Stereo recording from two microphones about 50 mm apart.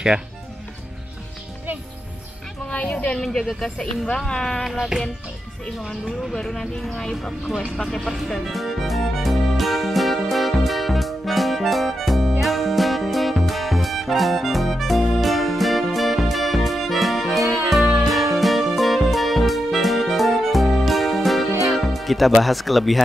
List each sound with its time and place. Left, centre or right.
2.7 s a sound: left
3.3 s speech: centre
4.6 s speech: centre
6.3 s speech: centre
7.7 s music: centre
21.6 s speech: centre